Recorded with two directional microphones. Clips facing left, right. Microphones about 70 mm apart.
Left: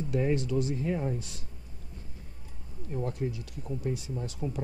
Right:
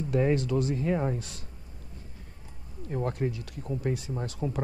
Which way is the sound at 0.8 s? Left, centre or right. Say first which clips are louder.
Right 3 dB; right.